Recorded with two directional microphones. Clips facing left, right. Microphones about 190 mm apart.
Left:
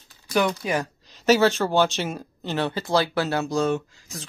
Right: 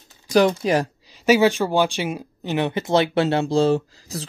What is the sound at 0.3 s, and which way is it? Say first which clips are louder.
Speech: right 6 dB; 30° right (ahead or behind).